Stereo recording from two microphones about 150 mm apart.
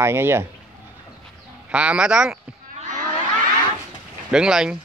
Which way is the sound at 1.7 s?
10° right (ahead or behind).